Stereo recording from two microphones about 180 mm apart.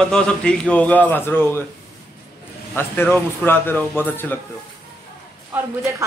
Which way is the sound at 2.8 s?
10° left (ahead or behind).